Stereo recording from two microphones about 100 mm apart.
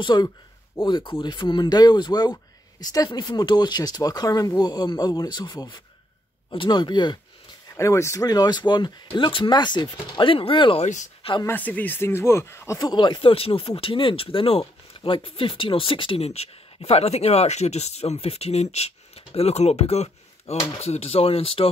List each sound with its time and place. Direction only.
0.0 s speech: 45° left (ahead or behind)
2.3 s a sound: 40° left (ahead or behind)
3.1 s speech: 45° left (ahead or behind)
6.5 s speech: 55° left (ahead or behind)
7.7 s speech: 30° left (ahead or behind); by 10.8 s 60° left (ahead or behind)
11.4 s speech: 15° left (ahead or behind)
12.7 s speech: 45° left (ahead or behind); by 21.6 s 70° left (ahead or behind)